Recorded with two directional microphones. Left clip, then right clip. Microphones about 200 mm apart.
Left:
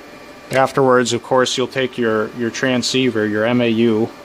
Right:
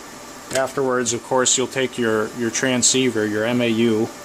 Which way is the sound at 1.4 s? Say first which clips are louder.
Left 2 dB; 15° left (ahead or behind).